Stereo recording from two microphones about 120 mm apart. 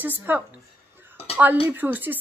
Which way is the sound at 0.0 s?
15° right (ahead or behind).